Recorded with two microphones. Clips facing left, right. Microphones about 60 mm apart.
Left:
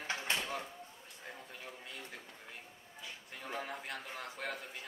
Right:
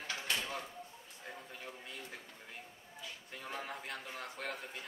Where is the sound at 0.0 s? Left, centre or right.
Left.